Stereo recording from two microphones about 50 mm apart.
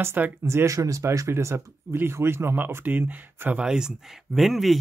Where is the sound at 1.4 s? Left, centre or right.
Right.